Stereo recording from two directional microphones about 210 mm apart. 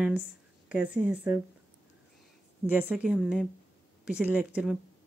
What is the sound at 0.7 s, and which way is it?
Speech, 5° right (ahead or behind).